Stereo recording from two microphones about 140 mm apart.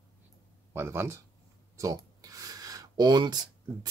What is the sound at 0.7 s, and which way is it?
Speech, 15° right (ahead or behind).